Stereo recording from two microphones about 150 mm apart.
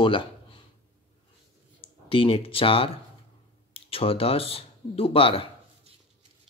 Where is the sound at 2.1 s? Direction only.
35° left (ahead or behind).